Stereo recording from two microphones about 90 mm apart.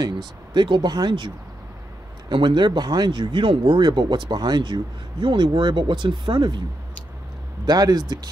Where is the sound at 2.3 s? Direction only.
60° right (ahead or behind).